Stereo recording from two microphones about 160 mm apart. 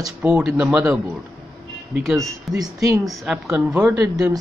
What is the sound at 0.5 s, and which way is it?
Speech, 10° right (ahead or behind).